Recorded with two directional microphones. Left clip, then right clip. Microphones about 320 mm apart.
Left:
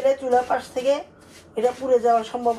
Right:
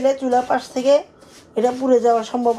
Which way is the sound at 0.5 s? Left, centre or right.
Right.